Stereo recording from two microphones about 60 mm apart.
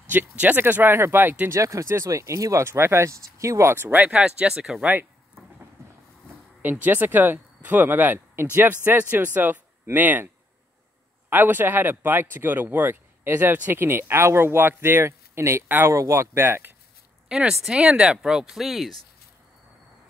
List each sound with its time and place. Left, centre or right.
0.1 s speech: right
1.5 s speech: right
3.9 s speech: right
4.2 s speech: centre
6.6 s speech: right
15.9 s speech: right
16.2 s speech: right
17.5 s speech: centre